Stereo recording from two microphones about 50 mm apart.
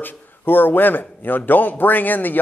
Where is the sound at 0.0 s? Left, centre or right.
Left.